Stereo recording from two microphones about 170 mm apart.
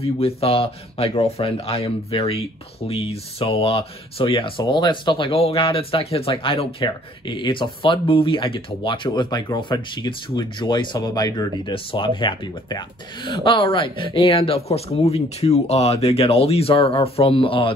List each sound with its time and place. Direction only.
0.0 s speech: 35° left (ahead or behind)